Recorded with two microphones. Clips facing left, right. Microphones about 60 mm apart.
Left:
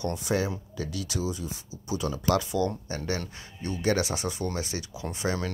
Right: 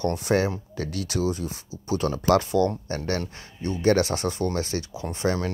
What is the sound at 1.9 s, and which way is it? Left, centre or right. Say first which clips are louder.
Speech: right 5 dB; right.